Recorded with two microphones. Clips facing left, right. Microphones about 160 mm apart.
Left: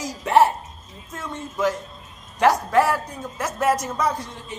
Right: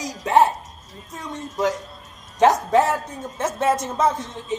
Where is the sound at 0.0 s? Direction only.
20° right (ahead or behind).